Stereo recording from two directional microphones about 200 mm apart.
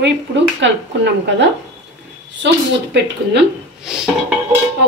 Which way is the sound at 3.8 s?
5° right (ahead or behind).